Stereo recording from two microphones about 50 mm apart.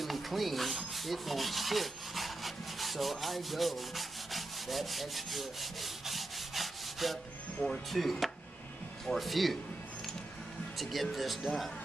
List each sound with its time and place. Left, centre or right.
0.0 s rub: centre
7.6 s speech: left
7.9 s speech: centre
10.8 s speech: centre